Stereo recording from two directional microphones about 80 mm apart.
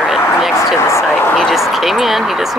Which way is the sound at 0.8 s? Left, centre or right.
Left.